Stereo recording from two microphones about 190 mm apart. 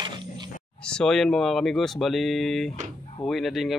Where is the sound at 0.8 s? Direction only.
5° left (ahead or behind).